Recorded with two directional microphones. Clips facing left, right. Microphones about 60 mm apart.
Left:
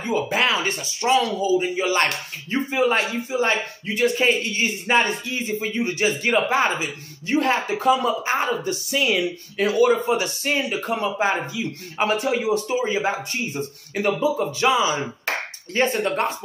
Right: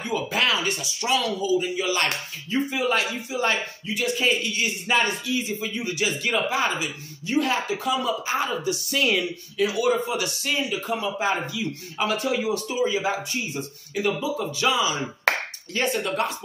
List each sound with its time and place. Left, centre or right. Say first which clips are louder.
0.0 s a man's voice: left 3 dB; left
8.9 s speech: left 2 dB; centre
9.6 s a man's voice: left 4 dB; left
11.1 s a man's voice: left 3 dB; left
14.3 s speech: left 4 dB; left
15.3 s clapping: right 4 dB; right
15.7 s a man's voice: left 4 dB; left